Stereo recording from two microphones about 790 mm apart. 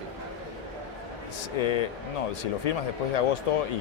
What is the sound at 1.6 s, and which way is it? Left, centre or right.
Speech, left.